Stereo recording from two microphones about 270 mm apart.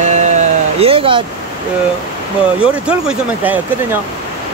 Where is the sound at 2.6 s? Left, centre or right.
Centre.